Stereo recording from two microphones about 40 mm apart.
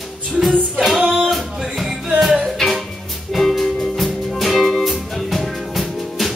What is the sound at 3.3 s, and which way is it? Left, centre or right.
Music, centre.